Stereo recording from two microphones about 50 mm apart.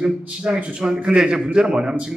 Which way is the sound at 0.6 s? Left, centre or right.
Right.